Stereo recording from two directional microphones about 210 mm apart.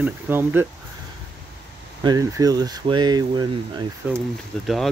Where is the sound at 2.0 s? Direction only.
15° right (ahead or behind); by 4.9 s centre (ahead or behind).